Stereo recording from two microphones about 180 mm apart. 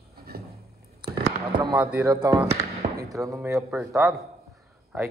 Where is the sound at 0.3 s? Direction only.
55° right (ahead or behind).